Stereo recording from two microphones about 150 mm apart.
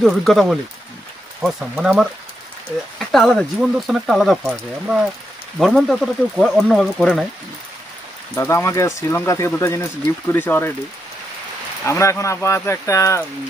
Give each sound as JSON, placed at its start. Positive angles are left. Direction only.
{"t": 0.0, "sound": "speech", "side_deg": 0}
{"t": 8.4, "sound": "speech", "side_deg": 20}
{"t": 11.8, "sound": "speech", "side_deg": 20}